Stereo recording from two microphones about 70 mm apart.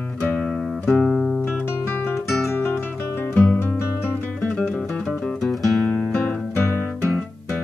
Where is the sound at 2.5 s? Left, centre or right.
Left.